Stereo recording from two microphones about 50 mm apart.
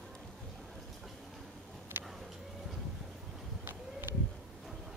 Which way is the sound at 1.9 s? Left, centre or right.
Right.